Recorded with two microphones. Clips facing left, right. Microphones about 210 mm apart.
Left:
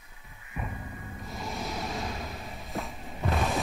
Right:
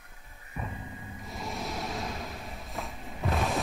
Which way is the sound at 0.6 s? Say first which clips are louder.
Left 1 dB; centre (ahead or behind).